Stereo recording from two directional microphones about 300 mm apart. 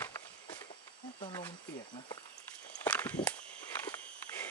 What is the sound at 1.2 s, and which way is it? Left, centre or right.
Speech, centre.